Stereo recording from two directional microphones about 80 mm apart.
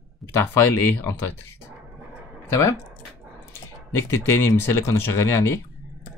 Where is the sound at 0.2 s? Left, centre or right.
Centre.